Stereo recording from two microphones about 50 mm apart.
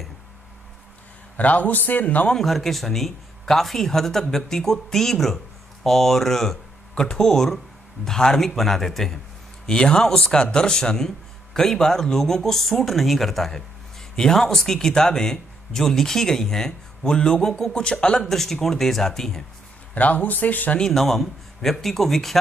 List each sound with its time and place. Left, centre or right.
1.3 s a man's voice: left
2.3 s a man's voice: centre
9.7 s speech: centre
19.9 s a man's voice: left
20.8 s a man's voice: centre